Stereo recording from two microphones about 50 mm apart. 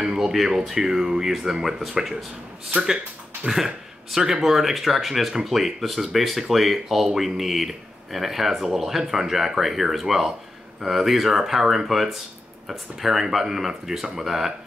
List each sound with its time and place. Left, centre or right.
0.0 s speech: centre
3.4 s speech: centre